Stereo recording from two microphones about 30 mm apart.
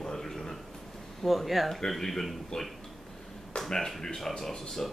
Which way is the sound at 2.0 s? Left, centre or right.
Centre.